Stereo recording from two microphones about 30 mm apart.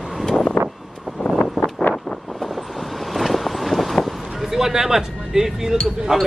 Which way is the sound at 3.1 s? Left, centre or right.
Centre.